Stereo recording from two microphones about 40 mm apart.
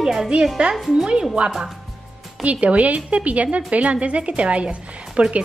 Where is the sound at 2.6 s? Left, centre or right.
Right.